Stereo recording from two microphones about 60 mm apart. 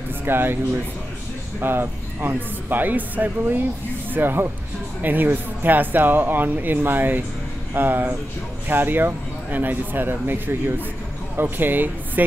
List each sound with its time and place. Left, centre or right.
0.2 s speech: right
1.6 s speech: right
11.5 s speech: right